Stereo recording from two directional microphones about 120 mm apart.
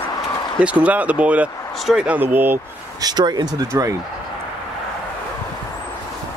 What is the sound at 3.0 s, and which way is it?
Speech, 35° right (ahead or behind).